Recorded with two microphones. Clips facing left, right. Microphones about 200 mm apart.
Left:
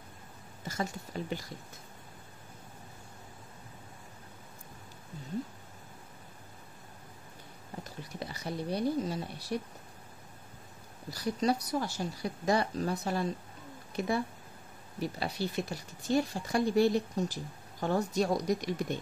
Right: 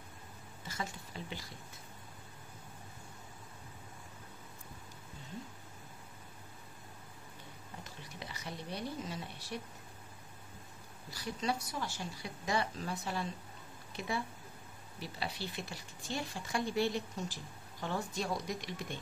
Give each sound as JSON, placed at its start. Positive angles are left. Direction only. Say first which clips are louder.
{"t": 0.7, "sound": "speech", "louder": "left 7 dB", "side_deg": 45}
{"t": 8.2, "sound": "speech", "louder": "left 8 dB", "side_deg": 35}
{"t": 11.1, "sound": "speech", "louder": "left 7 dB", "side_deg": 40}